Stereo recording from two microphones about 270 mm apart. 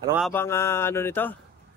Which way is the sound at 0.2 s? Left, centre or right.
Centre.